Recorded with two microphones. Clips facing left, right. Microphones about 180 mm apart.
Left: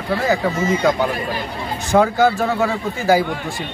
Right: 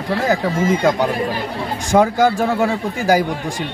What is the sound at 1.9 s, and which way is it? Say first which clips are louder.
Speech: right 1 dB; 10° right (ahead or behind).